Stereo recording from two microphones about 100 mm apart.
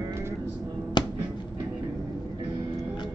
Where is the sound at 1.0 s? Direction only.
45° left (ahead or behind).